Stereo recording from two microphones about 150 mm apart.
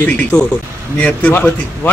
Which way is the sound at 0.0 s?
10° left (ahead or behind).